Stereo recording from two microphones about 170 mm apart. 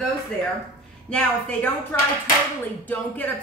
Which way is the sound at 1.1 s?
5° left (ahead or behind).